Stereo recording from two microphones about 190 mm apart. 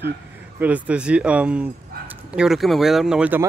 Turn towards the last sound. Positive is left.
turn(degrees=-5)  # may be behind; listen again after turning